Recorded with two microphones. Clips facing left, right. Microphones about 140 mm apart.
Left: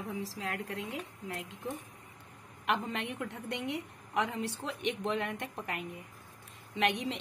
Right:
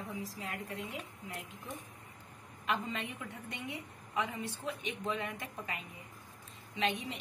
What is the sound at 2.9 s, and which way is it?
A woman's voice, 65° left (ahead or behind).